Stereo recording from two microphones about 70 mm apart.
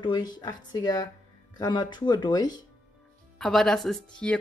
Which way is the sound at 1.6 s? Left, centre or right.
Left.